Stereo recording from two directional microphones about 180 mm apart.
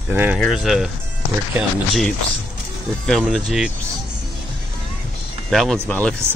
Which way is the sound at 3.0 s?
Centre (ahead or behind).